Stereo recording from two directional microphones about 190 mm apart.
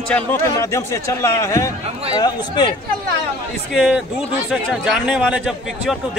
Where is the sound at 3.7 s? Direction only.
Centre (ahead or behind).